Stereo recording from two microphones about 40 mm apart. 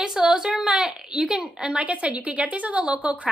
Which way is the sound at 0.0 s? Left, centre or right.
Centre.